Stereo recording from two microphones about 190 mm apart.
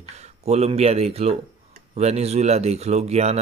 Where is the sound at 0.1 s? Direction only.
35° right (ahead or behind).